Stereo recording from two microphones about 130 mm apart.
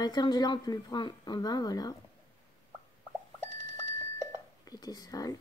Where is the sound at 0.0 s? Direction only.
30° left (ahead or behind).